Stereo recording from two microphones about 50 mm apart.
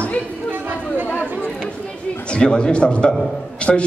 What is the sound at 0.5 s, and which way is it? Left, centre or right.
Chatter, right.